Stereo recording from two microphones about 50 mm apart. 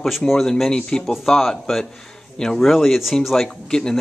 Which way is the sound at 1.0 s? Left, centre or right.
Centre.